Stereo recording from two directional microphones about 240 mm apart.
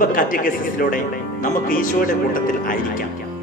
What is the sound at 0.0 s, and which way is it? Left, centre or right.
Speech, left.